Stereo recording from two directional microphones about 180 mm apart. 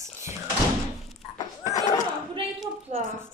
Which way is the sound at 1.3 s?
20° left (ahead or behind).